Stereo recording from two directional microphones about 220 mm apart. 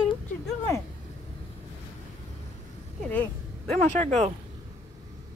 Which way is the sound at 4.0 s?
30° right (ahead or behind).